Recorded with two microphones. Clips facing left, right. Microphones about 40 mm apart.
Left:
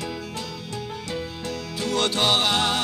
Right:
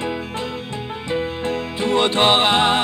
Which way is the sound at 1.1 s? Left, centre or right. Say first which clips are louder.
Right 11 dB; right.